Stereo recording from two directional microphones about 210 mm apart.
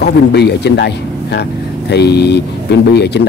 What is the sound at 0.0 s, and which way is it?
Speech, 50° left (ahead or behind).